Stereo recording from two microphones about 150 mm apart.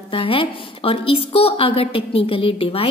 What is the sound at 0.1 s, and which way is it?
A woman's voice, 35° left (ahead or behind).